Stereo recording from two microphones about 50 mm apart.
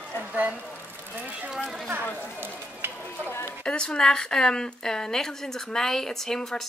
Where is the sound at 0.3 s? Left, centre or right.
Right.